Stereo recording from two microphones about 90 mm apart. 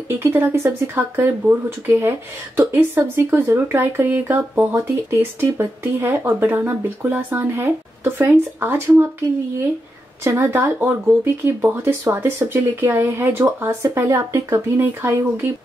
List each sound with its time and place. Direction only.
0.1 s speech: 25° right (ahead or behind)
10.2 s speech: 25° right (ahead or behind)